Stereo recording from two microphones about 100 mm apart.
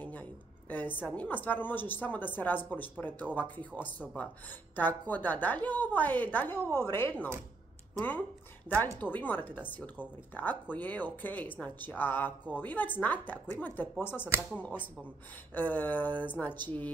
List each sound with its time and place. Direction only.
0.0 s speech: 15° left (ahead or behind)
8.7 s a woman's voice: 15° right (ahead or behind)
9.1 s speech: 15° left (ahead or behind)